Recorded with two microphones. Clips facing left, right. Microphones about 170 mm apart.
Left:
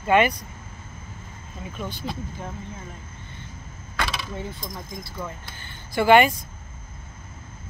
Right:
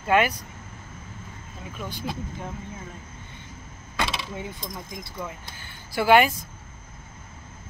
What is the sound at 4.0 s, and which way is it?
Door, 25° right (ahead or behind).